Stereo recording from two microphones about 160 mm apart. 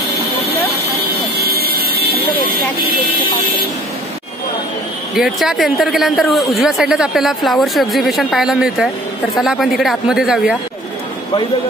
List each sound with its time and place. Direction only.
1.4 s vehicle: 75° right (ahead or behind)
5.1 s speech: centre (ahead or behind)